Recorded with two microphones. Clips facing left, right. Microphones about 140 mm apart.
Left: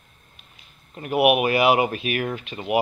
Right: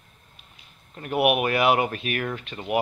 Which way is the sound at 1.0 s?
10° left (ahead or behind).